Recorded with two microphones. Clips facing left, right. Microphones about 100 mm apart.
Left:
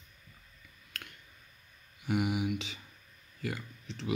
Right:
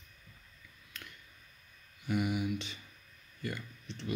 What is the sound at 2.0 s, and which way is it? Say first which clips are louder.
Mantra: left 2 dB; 75° left (ahead or behind).